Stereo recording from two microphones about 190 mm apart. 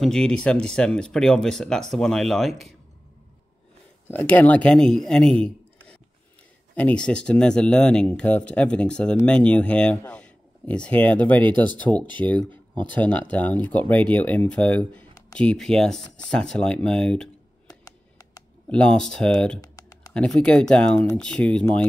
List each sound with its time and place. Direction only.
0.0 s speech: 5° left (ahead or behind)
4.1 s speech: 10° left (ahead or behind)
6.7 s speech: 5° left (ahead or behind)
17.6 s a sound: 20° left (ahead or behind)
18.7 s speech: 5° left (ahead or behind)
19.6 s typing: 20° left (ahead or behind)
20.2 s speech: 5° left (ahead or behind)